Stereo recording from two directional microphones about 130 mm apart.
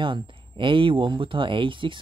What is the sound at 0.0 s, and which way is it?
Speech, 40° right (ahead or behind).